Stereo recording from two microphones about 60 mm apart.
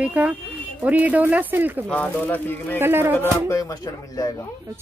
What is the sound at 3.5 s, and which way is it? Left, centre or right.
Speech, left.